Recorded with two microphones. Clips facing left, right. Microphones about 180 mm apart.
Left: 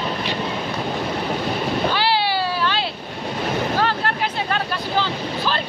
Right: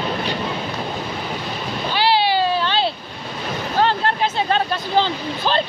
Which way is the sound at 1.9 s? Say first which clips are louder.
Right 3 dB; 20° right (ahead or behind).